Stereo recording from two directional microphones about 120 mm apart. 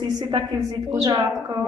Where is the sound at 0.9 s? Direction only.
30° right (ahead or behind).